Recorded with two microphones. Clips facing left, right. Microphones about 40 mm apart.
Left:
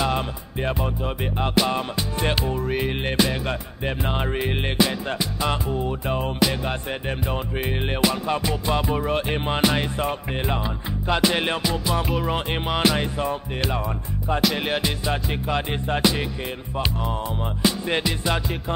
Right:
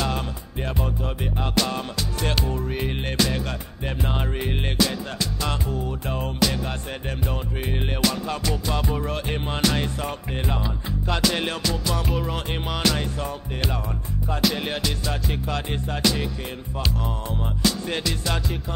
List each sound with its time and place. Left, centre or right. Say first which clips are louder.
0.0 s music: left 3 dB; centre